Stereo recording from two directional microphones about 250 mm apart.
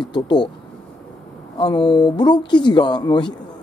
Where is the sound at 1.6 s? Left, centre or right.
Centre.